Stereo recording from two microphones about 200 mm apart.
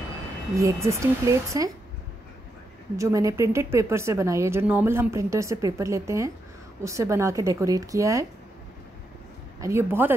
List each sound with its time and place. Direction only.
0.6 s speech: 15° right (ahead or behind)
3.0 s speech: 15° right (ahead or behind)
9.6 s speech: 15° right (ahead or behind)